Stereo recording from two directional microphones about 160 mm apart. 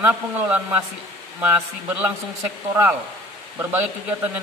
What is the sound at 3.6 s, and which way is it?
Speech, 10° right (ahead or behind).